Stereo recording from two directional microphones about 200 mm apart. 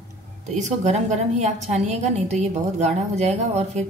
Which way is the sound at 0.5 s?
35° right (ahead or behind).